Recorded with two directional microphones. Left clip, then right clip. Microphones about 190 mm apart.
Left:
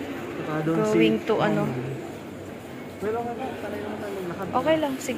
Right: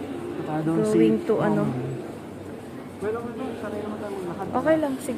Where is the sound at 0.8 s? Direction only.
15° right (ahead or behind).